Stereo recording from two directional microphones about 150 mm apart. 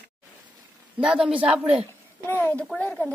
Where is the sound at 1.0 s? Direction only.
5° right (ahead or behind).